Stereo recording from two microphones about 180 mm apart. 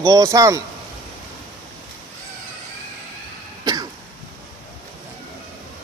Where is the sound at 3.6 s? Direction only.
20° right (ahead or behind).